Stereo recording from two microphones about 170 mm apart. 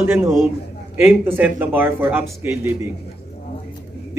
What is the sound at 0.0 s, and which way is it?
Speech, 15° right (ahead or behind).